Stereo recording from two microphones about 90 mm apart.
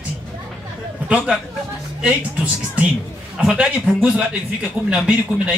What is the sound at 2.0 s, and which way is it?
A man's voice, 10° right (ahead or behind).